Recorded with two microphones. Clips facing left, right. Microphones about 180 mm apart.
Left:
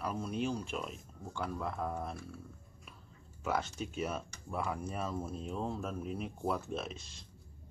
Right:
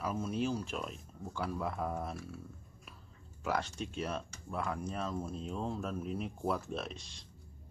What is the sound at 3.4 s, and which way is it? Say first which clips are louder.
Speech: even; 5° left (ahead or behind).